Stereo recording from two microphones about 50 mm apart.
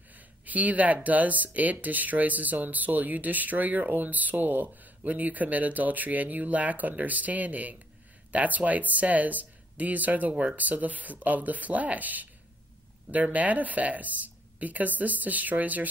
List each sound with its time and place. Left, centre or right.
0.5 s speech: right